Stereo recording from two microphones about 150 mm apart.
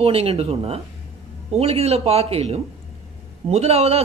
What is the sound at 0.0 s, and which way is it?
A man's voice, 40° right (ahead or behind).